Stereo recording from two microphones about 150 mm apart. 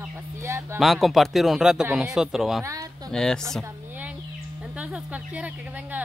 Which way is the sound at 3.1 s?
5° left (ahead or behind).